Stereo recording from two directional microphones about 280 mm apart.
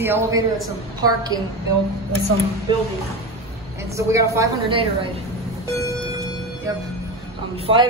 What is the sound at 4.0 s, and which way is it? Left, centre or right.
A woman's voice, centre.